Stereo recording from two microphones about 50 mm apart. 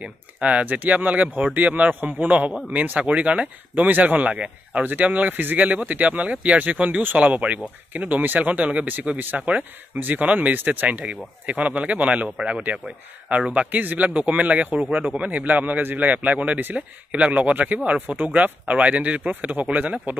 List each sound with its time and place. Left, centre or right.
0.0 s a man's voice: right